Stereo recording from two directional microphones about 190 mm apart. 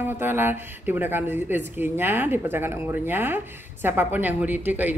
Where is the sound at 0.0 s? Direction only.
10° right (ahead or behind).